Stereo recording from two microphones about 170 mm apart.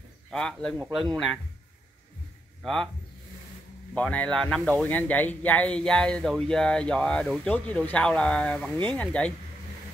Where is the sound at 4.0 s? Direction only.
5° left (ahead or behind).